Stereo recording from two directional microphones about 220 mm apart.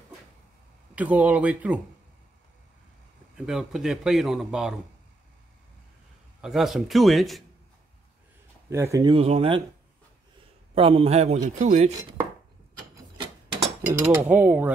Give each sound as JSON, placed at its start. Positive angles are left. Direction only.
{"t": 0.9, "sound": "speech", "side_deg": -5}
{"t": 3.3, "sound": "speech", "side_deg": 0}
{"t": 6.4, "sound": "speech", "side_deg": 0}
{"t": 8.6, "sound": "a man's voice", "side_deg": -15}
{"t": 10.7, "sound": "a man's voice", "side_deg": -25}
{"t": 14.0, "sound": "speech", "side_deg": -10}